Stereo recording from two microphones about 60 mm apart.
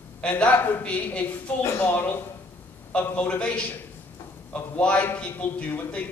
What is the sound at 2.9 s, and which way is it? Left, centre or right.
Speech, left.